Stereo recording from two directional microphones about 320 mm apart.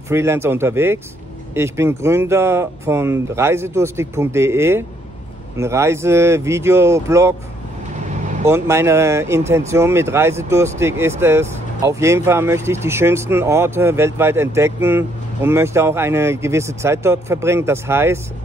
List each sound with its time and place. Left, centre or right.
0.1 s speech: centre
8.1 s vehicle: right
8.5 s speech: centre